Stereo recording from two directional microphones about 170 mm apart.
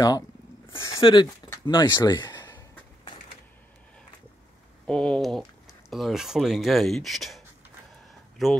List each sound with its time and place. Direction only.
0.7 s speech: 15° left (ahead or behind)
1.0 s a man's voice: 25° left (ahead or behind)
4.8 s speech: 5° left (ahead or behind)